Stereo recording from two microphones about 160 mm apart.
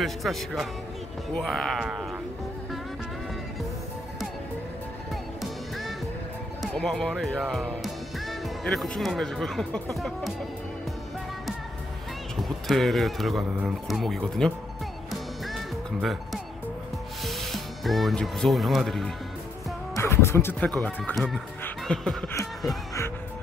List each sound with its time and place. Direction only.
0.0 s speech: centre (ahead or behind)
5.1 s music: centre (ahead or behind)
6.6 s speech: 5° left (ahead or behind)
12.4 s speech: centre (ahead or behind)
15.0 s music: centre (ahead or behind)
17.2 s speech: centre (ahead or behind)
20.0 s speech: 15° left (ahead or behind)
21.6 s chuckle: 5° left (ahead or behind)
22.3 s a sound: 20° left (ahead or behind)